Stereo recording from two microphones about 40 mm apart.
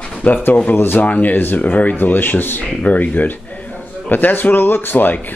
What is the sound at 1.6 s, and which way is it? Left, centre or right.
Speech, left.